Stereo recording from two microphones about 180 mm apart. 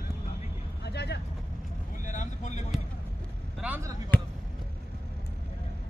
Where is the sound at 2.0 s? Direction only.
45° left (ahead or behind).